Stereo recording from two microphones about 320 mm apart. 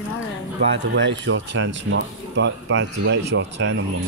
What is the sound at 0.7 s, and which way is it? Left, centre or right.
Speech, right.